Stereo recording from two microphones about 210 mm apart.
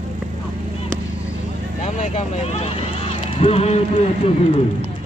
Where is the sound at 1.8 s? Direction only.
30° left (ahead or behind).